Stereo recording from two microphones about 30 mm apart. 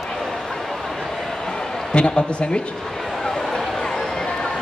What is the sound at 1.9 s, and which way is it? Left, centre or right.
Speech, left.